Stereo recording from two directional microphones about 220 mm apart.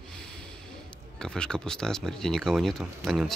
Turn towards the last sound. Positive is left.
turn(degrees=0)  # may be behind; listen again after turning